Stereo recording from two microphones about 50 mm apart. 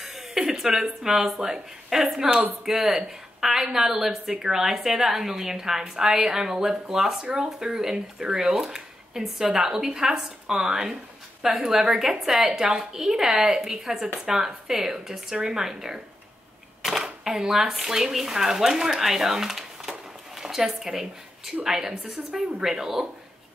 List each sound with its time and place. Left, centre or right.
0.0 s a woman's voice: centre